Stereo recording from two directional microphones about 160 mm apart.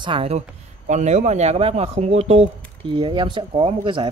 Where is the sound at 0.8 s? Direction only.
45° right (ahead or behind); by 4.1 s 30° right (ahead or behind).